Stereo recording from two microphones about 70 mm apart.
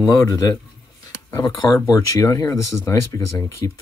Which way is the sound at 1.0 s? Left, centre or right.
Left.